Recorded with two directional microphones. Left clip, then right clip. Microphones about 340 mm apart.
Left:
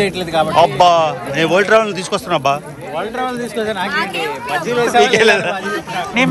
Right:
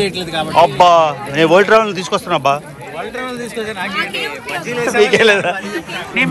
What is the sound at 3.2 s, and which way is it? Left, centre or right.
Speech, left.